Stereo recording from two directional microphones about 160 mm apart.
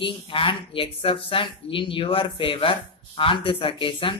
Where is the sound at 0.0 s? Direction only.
30° left (ahead or behind).